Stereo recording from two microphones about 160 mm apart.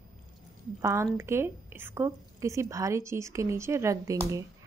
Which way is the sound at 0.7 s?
20° right (ahead or behind).